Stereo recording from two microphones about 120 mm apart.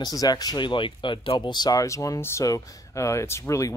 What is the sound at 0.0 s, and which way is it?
Speech, 30° left (ahead or behind).